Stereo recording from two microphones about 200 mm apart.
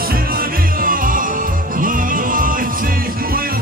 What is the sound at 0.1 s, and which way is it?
Music, 45° right (ahead or behind).